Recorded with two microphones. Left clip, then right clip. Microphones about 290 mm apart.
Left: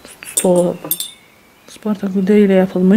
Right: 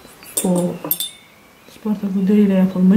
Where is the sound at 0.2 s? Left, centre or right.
Centre.